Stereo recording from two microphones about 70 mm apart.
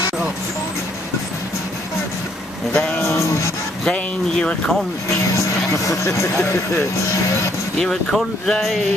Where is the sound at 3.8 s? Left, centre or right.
Centre.